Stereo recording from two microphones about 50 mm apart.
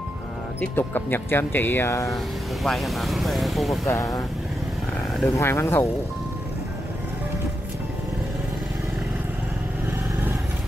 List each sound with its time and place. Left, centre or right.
0.6 s speech: left
2.6 s speech: centre
3.8 s speech: left
5.4 s speech: left